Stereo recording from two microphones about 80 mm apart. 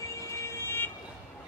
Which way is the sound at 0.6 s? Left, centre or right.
Left.